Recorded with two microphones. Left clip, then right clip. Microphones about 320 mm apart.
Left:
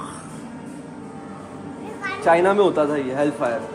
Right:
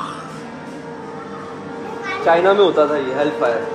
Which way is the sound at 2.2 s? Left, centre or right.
Left.